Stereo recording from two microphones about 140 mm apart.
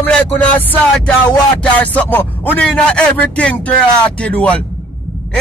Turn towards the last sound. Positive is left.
turn(degrees=10)  # may be behind; listen again after turning